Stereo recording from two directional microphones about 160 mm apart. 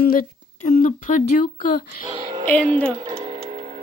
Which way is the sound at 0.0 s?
60° left (ahead or behind).